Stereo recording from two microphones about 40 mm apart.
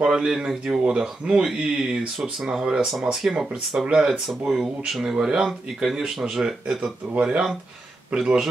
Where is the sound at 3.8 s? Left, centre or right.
Centre.